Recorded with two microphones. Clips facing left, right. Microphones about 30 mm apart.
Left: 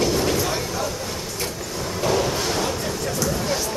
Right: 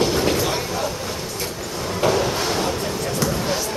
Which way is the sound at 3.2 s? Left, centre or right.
Centre.